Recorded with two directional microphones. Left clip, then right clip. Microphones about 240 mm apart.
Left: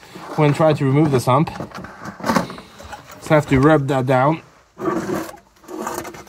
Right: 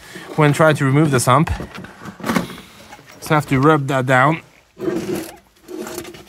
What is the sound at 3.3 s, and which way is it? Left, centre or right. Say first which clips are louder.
Speech: left 1 dB; centre.